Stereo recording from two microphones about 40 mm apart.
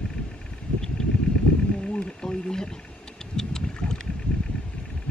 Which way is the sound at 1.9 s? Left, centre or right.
Left.